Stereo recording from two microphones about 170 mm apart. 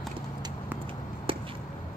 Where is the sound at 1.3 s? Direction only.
30° right (ahead or behind).